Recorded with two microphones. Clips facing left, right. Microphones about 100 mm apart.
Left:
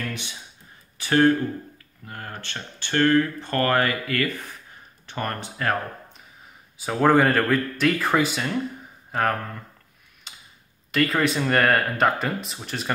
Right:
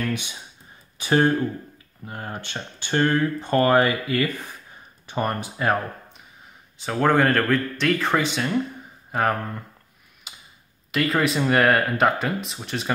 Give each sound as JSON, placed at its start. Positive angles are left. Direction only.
{"t": 0.1, "sound": "speech", "side_deg": -15}
{"t": 6.8, "sound": "speech", "side_deg": 5}
{"t": 10.3, "sound": "tick-tock", "side_deg": -5}
{"t": 10.9, "sound": "speech", "side_deg": 0}